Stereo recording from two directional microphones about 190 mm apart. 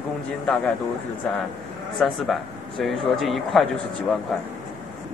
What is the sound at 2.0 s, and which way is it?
A man's voice, centre (ahead or behind).